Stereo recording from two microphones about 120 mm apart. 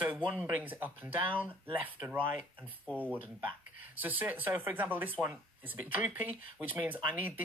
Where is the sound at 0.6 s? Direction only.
15° right (ahead or behind).